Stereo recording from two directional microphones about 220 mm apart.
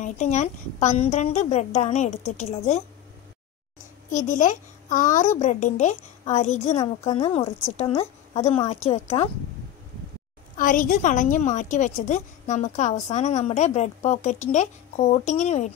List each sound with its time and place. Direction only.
0.0 s a woman's voice: 30° left (ahead or behind)
4.1 s a woman's voice: 35° left (ahead or behind)
10.6 s a woman's voice: 35° left (ahead or behind)